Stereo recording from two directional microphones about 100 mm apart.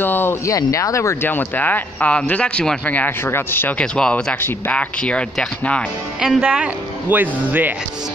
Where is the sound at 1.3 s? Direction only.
15° left (ahead or behind).